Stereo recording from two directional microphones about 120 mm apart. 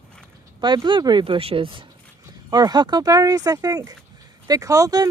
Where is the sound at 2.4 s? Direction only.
35° right (ahead or behind).